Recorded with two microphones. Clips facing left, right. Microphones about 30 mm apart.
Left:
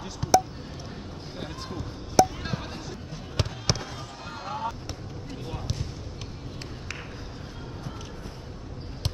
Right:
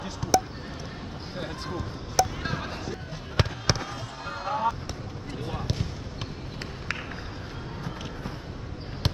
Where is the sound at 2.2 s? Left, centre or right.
Centre.